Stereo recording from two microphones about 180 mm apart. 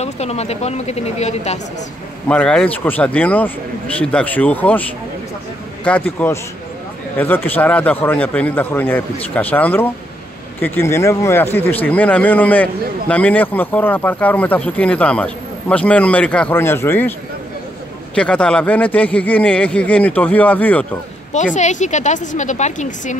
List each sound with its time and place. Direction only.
0.0 s speech: 35° left (ahead or behind)
2.2 s speech: 5° left (ahead or behind)
5.9 s speech: 5° left (ahead or behind)
18.1 s speech: 5° left (ahead or behind)
21.5 s a woman's voice: 40° left (ahead or behind)